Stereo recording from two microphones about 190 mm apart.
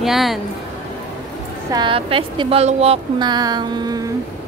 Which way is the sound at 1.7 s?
25° right (ahead or behind).